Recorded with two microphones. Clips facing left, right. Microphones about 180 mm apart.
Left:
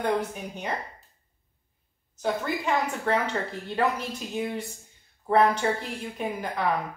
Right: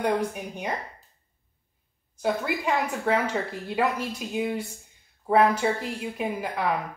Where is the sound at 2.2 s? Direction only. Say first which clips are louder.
Right 1 dB; 10° right (ahead or behind).